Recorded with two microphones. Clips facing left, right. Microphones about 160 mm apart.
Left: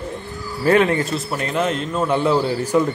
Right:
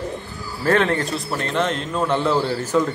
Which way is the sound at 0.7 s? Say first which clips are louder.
Left 3 dB; 10° left (ahead or behind).